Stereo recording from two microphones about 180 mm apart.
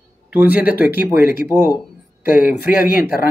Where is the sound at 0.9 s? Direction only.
55° left (ahead or behind).